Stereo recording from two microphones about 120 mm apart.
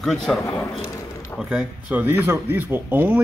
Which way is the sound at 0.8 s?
30° left (ahead or behind).